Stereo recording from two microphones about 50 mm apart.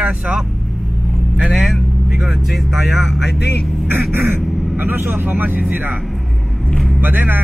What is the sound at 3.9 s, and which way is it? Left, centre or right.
Speech, right.